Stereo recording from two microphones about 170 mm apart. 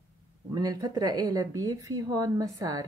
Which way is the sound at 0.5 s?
20° right (ahead or behind).